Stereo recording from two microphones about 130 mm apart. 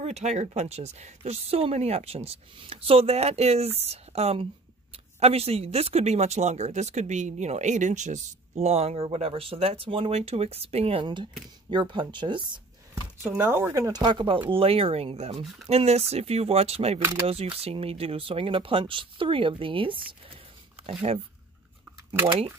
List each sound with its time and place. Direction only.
0.0 s speech: 60° right (ahead or behind)
11.7 s speech: 35° right (ahead or behind)
13.2 s speech: 15° right (ahead or behind); by 17.0 s 50° right (ahead or behind)
17.0 s speech: 25° right (ahead or behind)
17.3 s speech: 50° right (ahead or behind)
20.8 s a sound: 50° right (ahead or behind)